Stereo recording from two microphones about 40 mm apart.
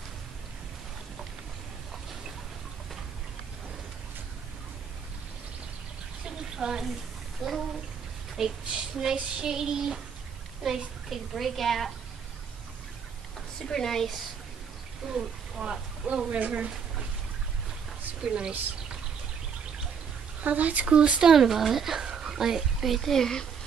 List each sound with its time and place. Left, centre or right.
6.2 s a sound: centre
7.4 s a woman's voice: centre
13.6 s speech: centre
15.0 s speech: centre
16.3 s speech: right
18.2 s speech: centre
20.4 s speech: right
21.2 s speech: centre